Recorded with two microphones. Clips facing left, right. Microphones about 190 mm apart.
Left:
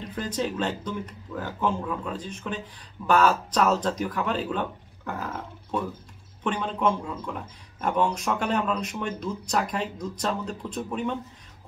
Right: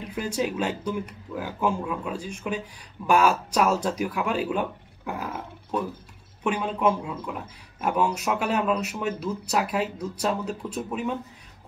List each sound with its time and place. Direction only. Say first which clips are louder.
0.0 s speech: right 2 dB; 10° right (ahead or behind)